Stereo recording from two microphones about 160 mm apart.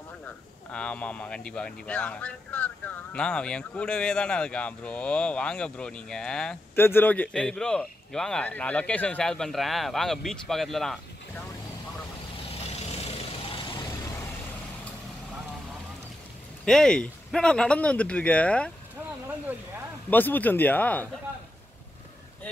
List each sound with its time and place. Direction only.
0.2 s speech: 5° left (ahead or behind)
12.9 s vehicle: 40° left (ahead or behind)
16.6 s speech: 5° left (ahead or behind)
20.1 s speech: 10° left (ahead or behind)